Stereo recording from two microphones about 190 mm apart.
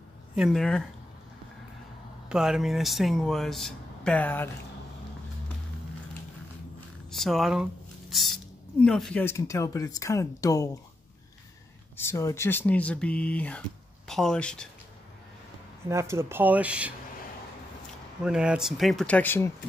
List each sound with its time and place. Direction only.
0.4 s speech: centre (ahead or behind)
2.2 s speech: 5° right (ahead or behind)
7.2 s speech: centre (ahead or behind)
9.2 s speech: 15° left (ahead or behind)
12.0 s speech: 15° left (ahead or behind)
15.9 s speech: 15° right (ahead or behind)
18.2 s speech: 5° right (ahead or behind); by 19.5 s 10° left (ahead or behind)